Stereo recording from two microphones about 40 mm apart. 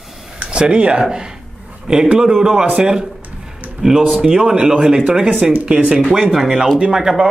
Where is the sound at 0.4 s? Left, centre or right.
Right.